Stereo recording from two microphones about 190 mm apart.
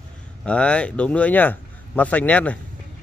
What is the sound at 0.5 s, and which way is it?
A man's voice, 5° left (ahead or behind).